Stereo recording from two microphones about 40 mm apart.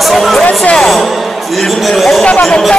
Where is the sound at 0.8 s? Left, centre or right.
Centre.